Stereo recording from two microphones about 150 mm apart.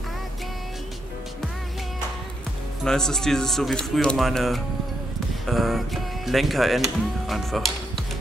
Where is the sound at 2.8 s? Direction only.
5° left (ahead or behind).